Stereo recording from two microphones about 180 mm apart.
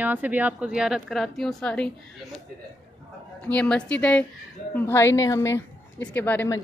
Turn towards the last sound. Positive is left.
turn(degrees=10)  # may be behind; listen again after turning